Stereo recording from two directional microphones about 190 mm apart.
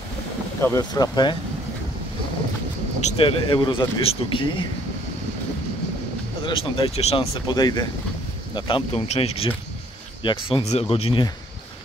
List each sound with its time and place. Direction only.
0.6 s speech: 15° left (ahead or behind)
3.0 s speech: 35° left (ahead or behind)
6.4 s speech: 30° left (ahead or behind)